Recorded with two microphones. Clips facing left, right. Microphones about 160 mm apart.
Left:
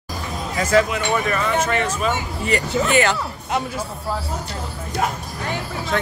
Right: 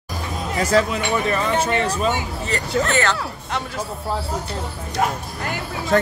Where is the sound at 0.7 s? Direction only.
35° right (ahead or behind).